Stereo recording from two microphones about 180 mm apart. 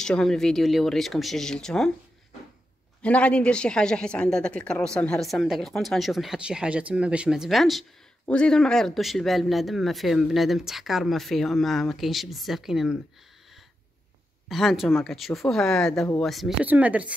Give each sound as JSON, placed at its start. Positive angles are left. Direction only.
{"t": 0.0, "sound": "a woman's voice", "side_deg": 5}
{"t": 3.0, "sound": "a woman's voice", "side_deg": 5}
{"t": 14.5, "sound": "a woman's voice", "side_deg": 0}